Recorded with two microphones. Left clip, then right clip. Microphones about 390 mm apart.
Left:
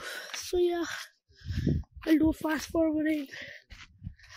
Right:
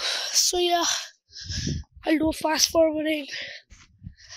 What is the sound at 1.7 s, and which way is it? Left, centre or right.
Speech, left.